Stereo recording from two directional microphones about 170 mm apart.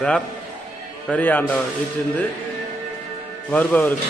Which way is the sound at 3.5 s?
10° left (ahead or behind).